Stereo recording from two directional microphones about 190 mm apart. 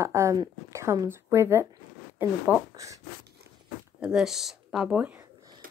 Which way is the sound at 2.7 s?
15° right (ahead or behind).